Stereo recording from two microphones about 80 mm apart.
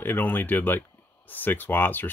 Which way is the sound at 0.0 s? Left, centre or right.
Left.